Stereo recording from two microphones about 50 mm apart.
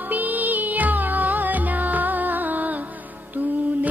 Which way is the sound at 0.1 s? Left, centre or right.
Right.